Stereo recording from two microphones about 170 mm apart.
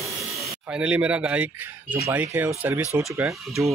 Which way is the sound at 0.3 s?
5° right (ahead or behind).